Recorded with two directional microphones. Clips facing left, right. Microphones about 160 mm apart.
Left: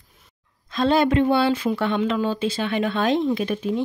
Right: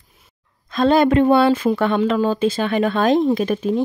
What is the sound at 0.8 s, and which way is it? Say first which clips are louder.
Speech: right 4 dB; 50° right (ahead or behind).